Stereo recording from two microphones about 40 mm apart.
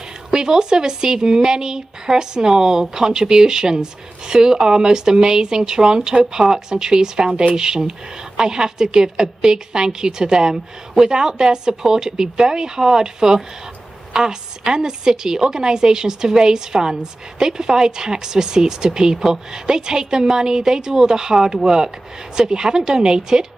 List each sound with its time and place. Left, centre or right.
0.3 s speech: centre